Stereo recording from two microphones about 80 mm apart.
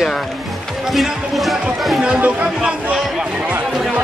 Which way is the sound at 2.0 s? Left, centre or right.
Centre.